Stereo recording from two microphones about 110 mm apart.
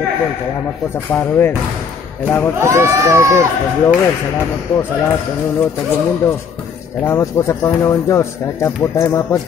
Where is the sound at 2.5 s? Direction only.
25° right (ahead or behind).